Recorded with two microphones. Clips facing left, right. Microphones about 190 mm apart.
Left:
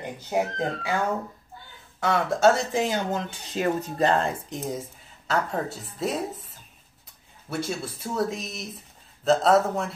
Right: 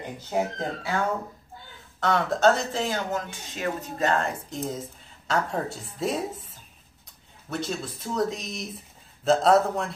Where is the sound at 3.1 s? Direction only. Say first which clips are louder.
Left 1 dB; 30° left (ahead or behind).